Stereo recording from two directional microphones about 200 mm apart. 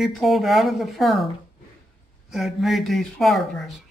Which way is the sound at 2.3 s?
Centre (ahead or behind).